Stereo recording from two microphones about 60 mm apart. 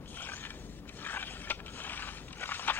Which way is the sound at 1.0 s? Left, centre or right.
Left.